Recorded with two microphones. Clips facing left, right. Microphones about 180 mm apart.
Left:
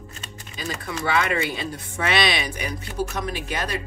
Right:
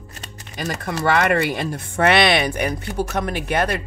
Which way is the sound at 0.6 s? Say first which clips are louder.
Right 5 dB; 65° right (ahead or behind).